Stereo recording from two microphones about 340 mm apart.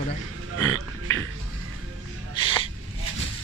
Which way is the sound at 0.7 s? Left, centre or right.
Right.